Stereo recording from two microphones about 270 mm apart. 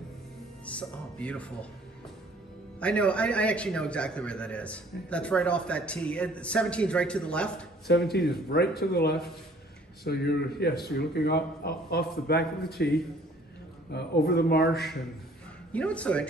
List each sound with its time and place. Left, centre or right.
0.7 s a man's voice: centre
2.8 s a man's voice: centre
7.8 s speech: left
13.9 s speech: left
15.7 s a man's voice: centre